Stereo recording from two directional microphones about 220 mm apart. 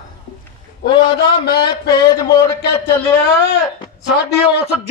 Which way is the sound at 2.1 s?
15° left (ahead or behind).